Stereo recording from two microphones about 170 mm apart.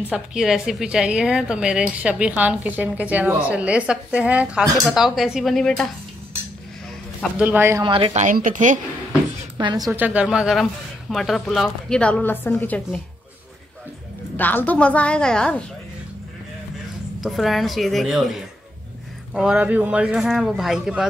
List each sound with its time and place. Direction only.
0.1 s a man's voice: 5° right (ahead or behind)
7.3 s speech: 10° right (ahead or behind)
7.8 s a woman's voice: 30° right (ahead or behind); by 8.7 s 50° right (ahead or behind)
9.6 s a woman's voice: 25° right (ahead or behind)
9.9 s a man's voice: 10° right (ahead or behind); by 13.0 s 10° left (ahead or behind)
14.3 s a woman's voice: 10° left (ahead or behind)
17.2 s a man's voice: centre (ahead or behind)